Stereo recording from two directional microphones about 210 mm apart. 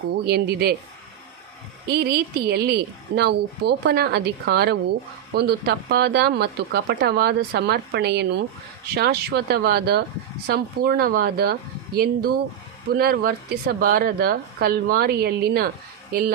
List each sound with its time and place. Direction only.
0.2 s speech: 50° right (ahead or behind)
1.9 s speech: 50° right (ahead or behind)